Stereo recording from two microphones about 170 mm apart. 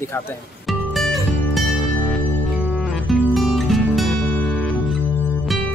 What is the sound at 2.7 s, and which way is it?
Music, 5° right (ahead or behind).